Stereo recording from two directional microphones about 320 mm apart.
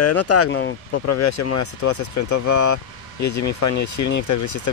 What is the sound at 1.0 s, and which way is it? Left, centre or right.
Speech, left.